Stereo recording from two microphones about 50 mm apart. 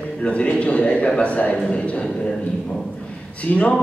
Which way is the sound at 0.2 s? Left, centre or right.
Left.